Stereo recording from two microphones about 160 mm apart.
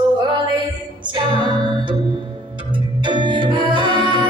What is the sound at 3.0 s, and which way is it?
Music, 30° right (ahead or behind).